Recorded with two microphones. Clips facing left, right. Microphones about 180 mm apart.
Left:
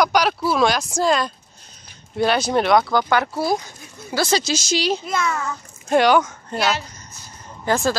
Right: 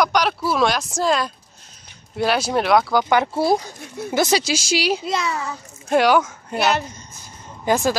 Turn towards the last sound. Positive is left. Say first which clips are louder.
# right 1 dB
turn(degrees=-15)  # may be behind; listen again after turning